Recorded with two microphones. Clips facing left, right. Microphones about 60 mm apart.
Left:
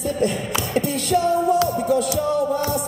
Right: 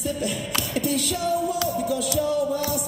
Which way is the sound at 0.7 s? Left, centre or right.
Left.